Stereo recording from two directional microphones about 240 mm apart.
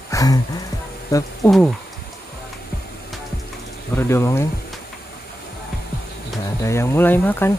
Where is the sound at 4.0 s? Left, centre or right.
Centre.